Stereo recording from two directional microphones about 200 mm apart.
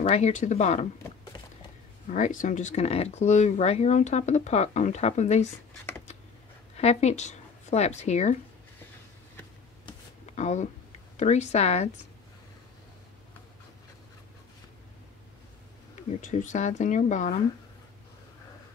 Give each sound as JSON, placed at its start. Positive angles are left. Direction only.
{"t": 0.0, "sound": "speech", "side_deg": 35}
{"t": 2.0, "sound": "speech", "side_deg": 40}
{"t": 6.8, "sound": "speech", "side_deg": 35}
{"t": 10.2, "sound": "a sound", "side_deg": 35}
{"t": 11.1, "sound": "speech", "side_deg": 35}
{"t": 16.2, "sound": "speech", "side_deg": 40}